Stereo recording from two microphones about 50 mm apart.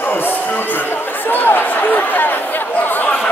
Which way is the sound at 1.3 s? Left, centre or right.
Left.